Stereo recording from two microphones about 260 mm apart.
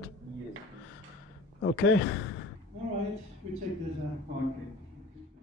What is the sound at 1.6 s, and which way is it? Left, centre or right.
Speech, left.